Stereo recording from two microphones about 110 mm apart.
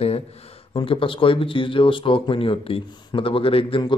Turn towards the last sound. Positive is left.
turn(degrees=50)  # may be behind; listen again after turning